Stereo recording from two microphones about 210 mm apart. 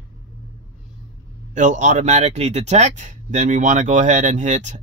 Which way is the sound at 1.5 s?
35° right (ahead or behind).